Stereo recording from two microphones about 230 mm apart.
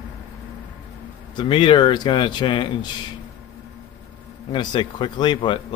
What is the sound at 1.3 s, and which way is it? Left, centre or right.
Speech, left.